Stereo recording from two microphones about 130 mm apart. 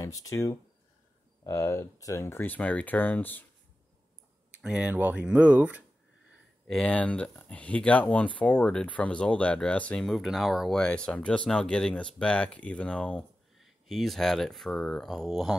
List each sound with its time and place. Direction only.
0.0 s speech: 25° left (ahead or behind)
4.6 s speech: 5° right (ahead or behind)
6.7 s speech: 5° left (ahead or behind)